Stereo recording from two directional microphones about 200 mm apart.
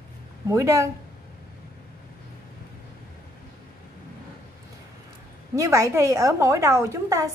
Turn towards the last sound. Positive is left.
turn(degrees=-15)  # may be behind; listen again after turning